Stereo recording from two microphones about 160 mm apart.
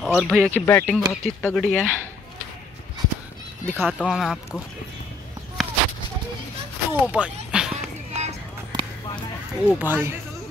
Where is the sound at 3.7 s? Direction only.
15° right (ahead or behind).